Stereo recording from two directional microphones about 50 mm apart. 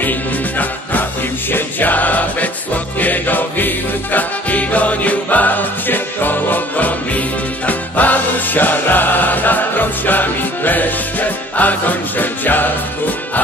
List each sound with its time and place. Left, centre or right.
1.5 s music: left